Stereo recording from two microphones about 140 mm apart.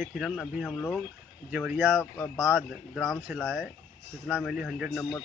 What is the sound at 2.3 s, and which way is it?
Speech, 5° right (ahead or behind).